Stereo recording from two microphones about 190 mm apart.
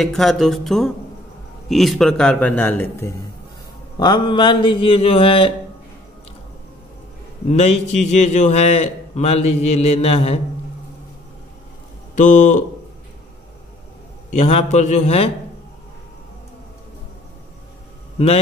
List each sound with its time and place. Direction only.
0.0 s a man's voice: centre (ahead or behind)
4.0 s speech: 25° left (ahead or behind)
7.4 s a man's voice: 35° left (ahead or behind)
12.2 s a man's voice: 40° left (ahead or behind)
14.3 s a man's voice: 35° left (ahead or behind)
18.1 s speech: 30° left (ahead or behind)